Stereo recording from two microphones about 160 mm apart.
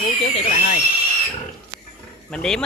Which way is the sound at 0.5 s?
55° left (ahead or behind).